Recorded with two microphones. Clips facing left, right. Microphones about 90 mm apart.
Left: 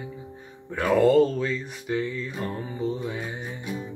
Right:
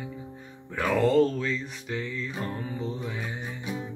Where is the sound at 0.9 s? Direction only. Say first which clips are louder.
Left 4 dB; 5° left (ahead or behind).